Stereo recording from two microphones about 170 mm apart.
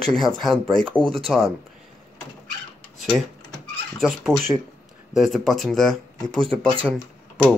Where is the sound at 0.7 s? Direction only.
5° left (ahead or behind).